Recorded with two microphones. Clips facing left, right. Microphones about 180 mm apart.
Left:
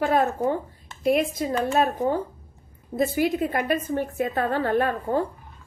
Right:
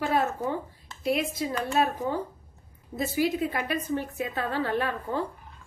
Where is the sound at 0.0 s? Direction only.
50° left (ahead or behind).